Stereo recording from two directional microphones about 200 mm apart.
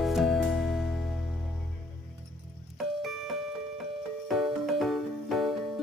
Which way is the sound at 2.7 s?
Centre (ahead or behind).